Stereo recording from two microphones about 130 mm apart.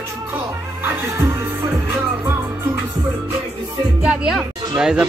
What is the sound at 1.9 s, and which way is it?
Music, 15° right (ahead or behind).